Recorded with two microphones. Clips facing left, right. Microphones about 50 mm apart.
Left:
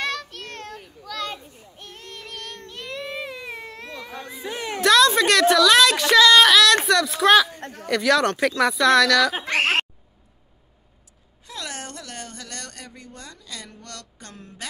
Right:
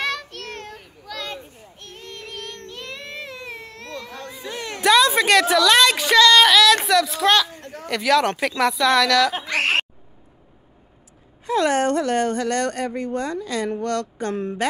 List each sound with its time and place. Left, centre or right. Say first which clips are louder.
0.0 s children playing: right 2 dB; centre
4.8 s a woman's voice: even; centre
11.4 s speech: right 16 dB; right